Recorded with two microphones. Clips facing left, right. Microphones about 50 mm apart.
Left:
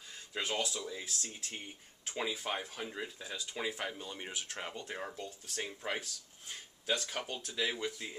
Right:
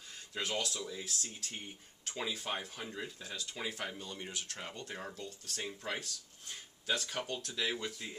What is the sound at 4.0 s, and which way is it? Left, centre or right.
Speech, centre.